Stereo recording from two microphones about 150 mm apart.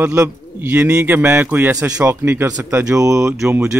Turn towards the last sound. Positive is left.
turn(degrees=-20)  # may be behind; listen again after turning